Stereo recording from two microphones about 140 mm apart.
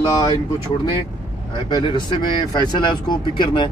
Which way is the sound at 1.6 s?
30° left (ahead or behind).